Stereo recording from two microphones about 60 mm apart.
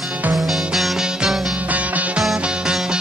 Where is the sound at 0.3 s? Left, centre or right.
Centre.